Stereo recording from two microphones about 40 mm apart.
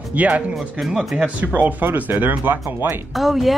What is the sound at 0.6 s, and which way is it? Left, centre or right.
Speech, centre.